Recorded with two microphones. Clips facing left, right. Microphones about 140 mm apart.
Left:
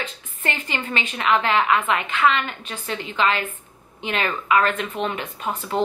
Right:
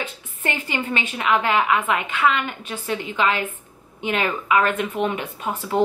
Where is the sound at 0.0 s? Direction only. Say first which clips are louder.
Right 1 dB; 10° right (ahead or behind).